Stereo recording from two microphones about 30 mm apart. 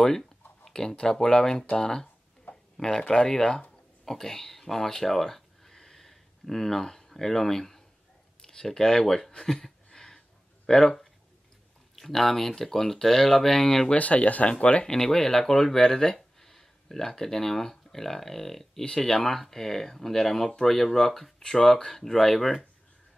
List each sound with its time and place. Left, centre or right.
0.1 s a sound: centre
0.7 s speech: left
4.0 s a sound: centre
7.1 s speech: centre
8.4 s speech: left
9.5 s a sound: left
10.7 s speech: left
11.9 s speech: centre
13.9 s speech: left
14.9 s speech: centre